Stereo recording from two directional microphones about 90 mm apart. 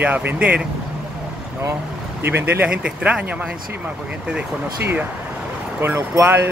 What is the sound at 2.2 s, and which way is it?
Speech, 25° right (ahead or behind).